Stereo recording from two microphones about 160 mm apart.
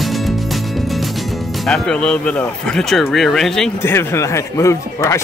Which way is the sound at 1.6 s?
5° left (ahead or behind).